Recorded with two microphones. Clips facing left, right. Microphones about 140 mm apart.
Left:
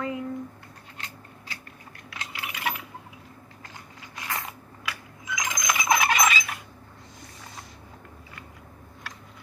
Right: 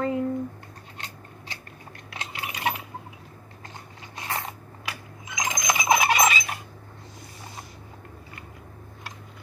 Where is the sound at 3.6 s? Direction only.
25° right (ahead or behind).